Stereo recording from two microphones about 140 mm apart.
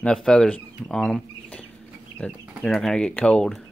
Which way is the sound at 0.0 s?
5° left (ahead or behind).